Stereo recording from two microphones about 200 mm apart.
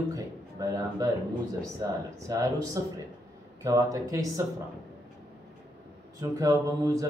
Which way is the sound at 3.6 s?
15° right (ahead or behind).